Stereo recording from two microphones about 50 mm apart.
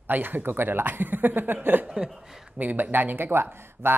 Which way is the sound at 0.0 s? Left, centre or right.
Right.